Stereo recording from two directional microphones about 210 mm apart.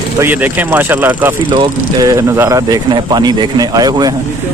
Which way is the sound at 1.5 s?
20° right (ahead or behind).